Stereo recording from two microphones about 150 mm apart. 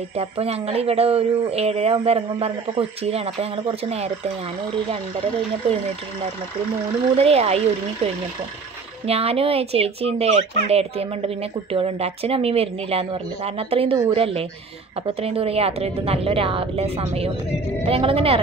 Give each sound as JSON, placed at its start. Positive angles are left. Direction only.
{"t": 0.1, "sound": "speech", "side_deg": -40}
{"t": 7.2, "sound": "speech", "side_deg": -45}
{"t": 9.0, "sound": "speech", "side_deg": -40}